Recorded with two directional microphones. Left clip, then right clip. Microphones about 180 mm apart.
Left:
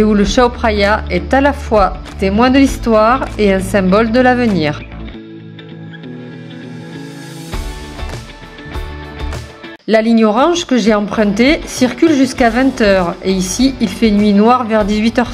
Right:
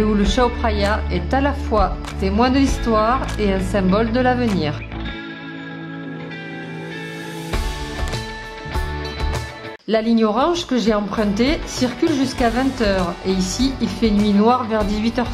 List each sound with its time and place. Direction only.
0.1 s a woman's voice: 20° left (ahead or behind)
9.8 s a woman's voice: 20° left (ahead or behind)